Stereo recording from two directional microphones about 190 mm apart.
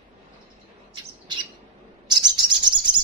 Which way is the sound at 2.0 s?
20° right (ahead or behind).